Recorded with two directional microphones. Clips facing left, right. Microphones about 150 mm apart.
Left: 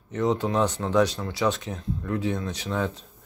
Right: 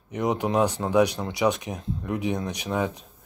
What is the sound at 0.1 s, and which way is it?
Speech, 15° right (ahead or behind).